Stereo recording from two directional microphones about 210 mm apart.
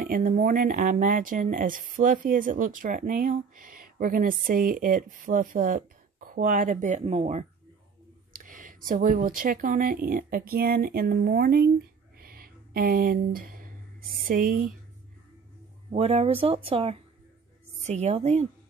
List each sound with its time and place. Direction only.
0.0 s speech: 40° right (ahead or behind)
12.2 s a sound: 45° right (ahead or behind)
14.2 s speech: 45° right (ahead or behind)
15.9 s speech: 30° right (ahead or behind)